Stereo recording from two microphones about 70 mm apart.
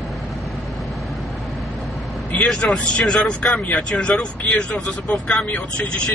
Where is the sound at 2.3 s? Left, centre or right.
Centre.